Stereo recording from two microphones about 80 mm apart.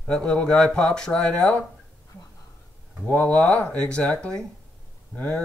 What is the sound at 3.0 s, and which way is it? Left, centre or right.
Speech, centre.